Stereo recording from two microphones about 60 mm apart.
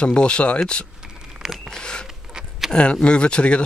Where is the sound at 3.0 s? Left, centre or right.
Centre.